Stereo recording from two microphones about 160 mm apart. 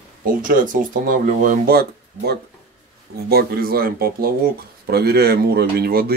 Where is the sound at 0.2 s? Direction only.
55° right (ahead or behind).